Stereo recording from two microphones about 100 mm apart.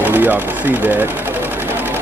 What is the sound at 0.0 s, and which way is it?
Sewing machine, 20° right (ahead or behind).